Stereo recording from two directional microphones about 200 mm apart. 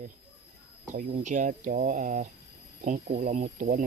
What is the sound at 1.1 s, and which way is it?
Speech, 40° right (ahead or behind).